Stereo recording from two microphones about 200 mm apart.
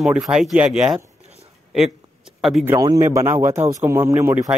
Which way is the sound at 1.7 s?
Centre (ahead or behind).